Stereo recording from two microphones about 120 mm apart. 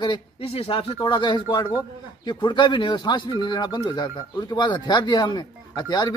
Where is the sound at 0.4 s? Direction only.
55° left (ahead or behind).